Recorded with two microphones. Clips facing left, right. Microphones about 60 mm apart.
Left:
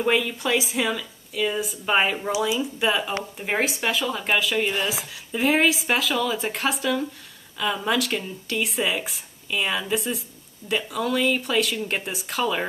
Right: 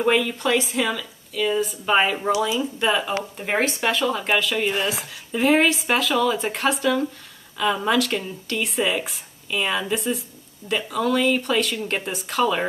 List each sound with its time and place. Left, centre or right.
0.0 s speech: centre